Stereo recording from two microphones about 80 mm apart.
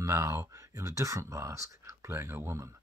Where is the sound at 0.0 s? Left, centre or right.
Right.